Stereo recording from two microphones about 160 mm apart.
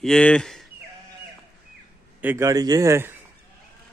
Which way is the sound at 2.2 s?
15° right (ahead or behind).